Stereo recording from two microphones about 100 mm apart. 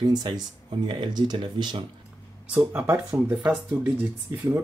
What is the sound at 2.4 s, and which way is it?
Speech, 15° right (ahead or behind).